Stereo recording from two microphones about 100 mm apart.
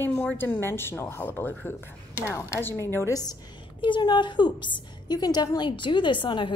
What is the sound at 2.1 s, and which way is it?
Speech, 30° left (ahead or behind).